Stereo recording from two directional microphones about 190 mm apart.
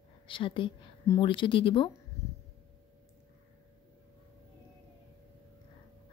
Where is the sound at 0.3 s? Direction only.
25° left (ahead or behind).